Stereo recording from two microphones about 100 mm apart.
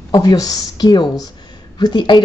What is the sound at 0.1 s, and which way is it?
A woman's voice, 40° left (ahead or behind).